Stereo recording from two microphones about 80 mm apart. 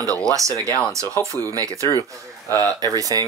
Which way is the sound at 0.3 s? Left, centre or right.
Right.